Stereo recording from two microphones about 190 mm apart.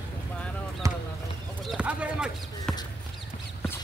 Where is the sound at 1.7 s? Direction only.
5° right (ahead or behind).